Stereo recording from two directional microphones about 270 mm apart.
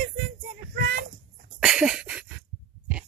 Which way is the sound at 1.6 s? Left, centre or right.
Centre.